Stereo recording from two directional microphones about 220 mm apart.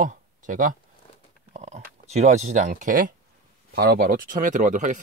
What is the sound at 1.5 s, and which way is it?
Speech, 30° right (ahead or behind).